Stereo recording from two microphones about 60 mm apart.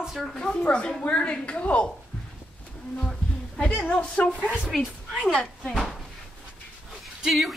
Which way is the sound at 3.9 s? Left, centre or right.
Left.